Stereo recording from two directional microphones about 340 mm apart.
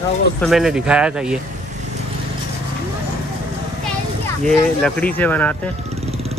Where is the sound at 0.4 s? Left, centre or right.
Centre.